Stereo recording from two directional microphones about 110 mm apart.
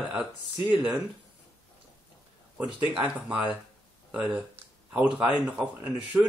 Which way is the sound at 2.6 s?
10° right (ahead or behind).